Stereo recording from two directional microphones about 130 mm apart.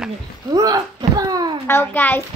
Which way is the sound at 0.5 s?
30° right (ahead or behind).